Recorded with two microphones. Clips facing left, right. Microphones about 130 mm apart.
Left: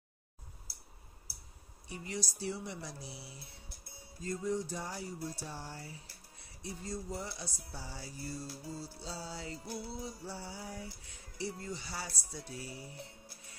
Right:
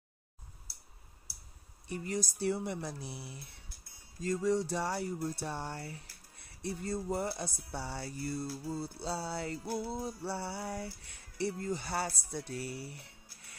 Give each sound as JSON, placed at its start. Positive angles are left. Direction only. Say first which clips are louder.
{"t": 1.9, "sound": "speech", "louder": "right 5 dB", "side_deg": -50}
{"t": 4.2, "sound": "music", "louder": "right 5 dB", "side_deg": -90}
{"t": 5.2, "sound": "speech", "louder": "right 5 dB", "side_deg": -65}
{"t": 9.7, "sound": "speech", "louder": "right 5 dB", "side_deg": -50}